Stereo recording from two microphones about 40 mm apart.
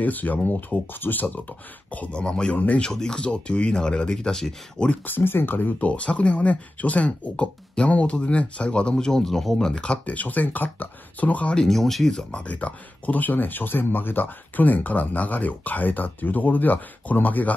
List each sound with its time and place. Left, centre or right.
0.0 s speech: left
2.1 s speech: left
2.5 s speech: left
2.8 s speech: centre
3.3 s speech: left; by 4.6 s centre
5.0 s speech: left
5.8 s speech: left; by 9.7 s centre
9.7 s speech: left
10.0 s speech: left
11.6 s speech: centre
12.2 s speech: left
12.4 s speech: left